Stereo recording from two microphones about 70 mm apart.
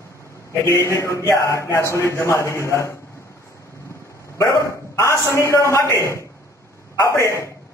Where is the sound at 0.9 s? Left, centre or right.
Left.